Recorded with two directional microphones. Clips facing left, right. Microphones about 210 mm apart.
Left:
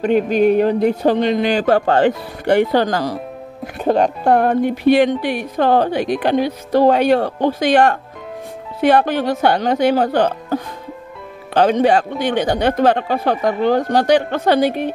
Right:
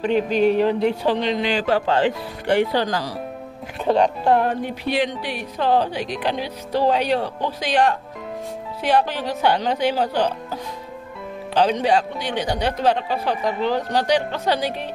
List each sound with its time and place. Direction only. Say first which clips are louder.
0.0 s speech: left 4 dB; 50° left (ahead or behind)